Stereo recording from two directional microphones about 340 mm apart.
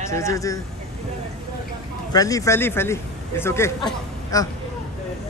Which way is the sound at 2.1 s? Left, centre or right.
Centre.